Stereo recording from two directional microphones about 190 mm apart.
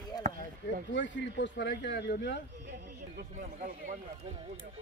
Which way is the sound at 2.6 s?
60° right (ahead or behind).